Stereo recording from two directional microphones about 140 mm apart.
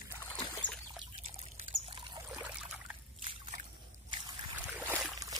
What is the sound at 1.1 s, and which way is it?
Trickle, 45° right (ahead or behind).